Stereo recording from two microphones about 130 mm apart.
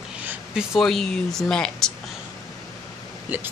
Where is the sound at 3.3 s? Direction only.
15° right (ahead or behind).